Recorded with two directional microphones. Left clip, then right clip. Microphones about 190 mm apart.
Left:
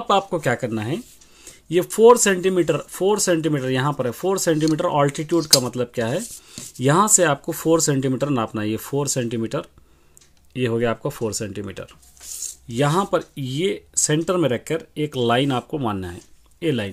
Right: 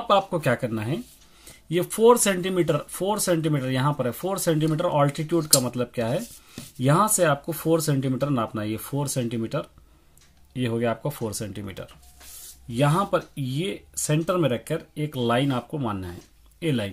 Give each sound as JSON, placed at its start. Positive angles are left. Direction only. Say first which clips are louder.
{"t": 0.1, "sound": "speech", "louder": "left 2 dB", "side_deg": 30}